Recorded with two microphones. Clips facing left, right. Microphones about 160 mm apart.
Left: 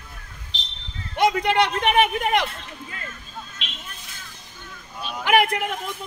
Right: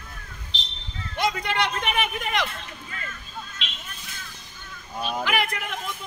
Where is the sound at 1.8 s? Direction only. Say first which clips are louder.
Left 7 dB; 60° left (ahead or behind).